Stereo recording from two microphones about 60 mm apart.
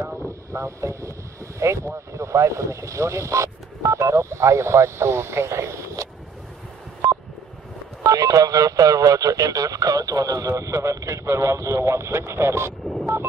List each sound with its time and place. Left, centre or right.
0.0 s vehicle: right
1.6 s speech: right
8.0 s speech: right
13.0 s a sound: right